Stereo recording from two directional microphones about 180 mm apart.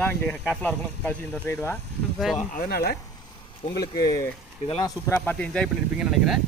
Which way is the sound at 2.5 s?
55° left (ahead or behind).